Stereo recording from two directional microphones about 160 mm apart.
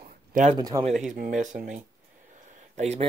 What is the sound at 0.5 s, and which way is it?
Speech, 25° right (ahead or behind).